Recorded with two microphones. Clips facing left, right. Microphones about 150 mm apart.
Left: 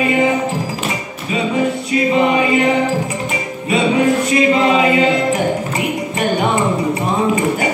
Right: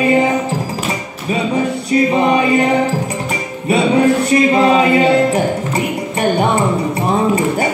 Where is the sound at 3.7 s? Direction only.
35° right (ahead or behind).